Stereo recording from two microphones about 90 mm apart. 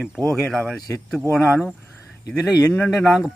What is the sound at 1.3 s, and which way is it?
Speech, 10° left (ahead or behind).